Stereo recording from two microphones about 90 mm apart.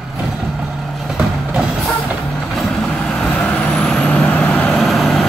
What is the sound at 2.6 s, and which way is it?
Vehicle, 5° left (ahead or behind).